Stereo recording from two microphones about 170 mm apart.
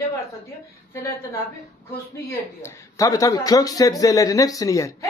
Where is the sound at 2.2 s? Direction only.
20° left (ahead or behind).